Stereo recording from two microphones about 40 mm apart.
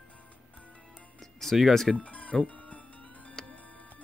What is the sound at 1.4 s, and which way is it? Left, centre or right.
Speech, centre.